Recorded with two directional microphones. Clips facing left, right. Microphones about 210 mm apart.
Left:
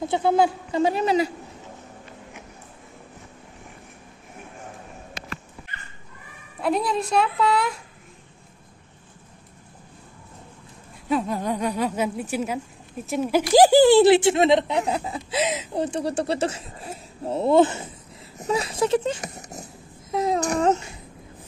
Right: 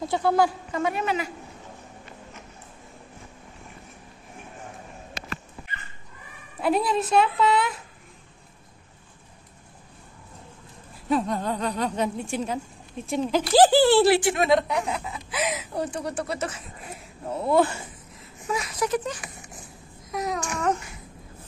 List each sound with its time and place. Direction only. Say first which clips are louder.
0.0 s speech: left 2 dB; 20° left (ahead or behind)
5.2 s dog: right 1 dB; 40° right (ahead or behind)
6.6 s speech: even; 5° right (ahead or behind)
11.1 s speech: left 1 dB; 5° left (ahead or behind); by 19.2 s 25° left (ahead or behind)
19.2 s a sound: left 7 dB; 40° left (ahead or behind)
19.6 s babbling: left 3 dB; 25° left (ahead or behind)